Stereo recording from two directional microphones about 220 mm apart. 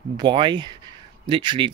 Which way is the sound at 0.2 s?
20° right (ahead or behind).